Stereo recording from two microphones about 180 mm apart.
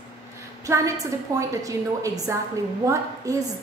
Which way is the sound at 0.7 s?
15° right (ahead or behind).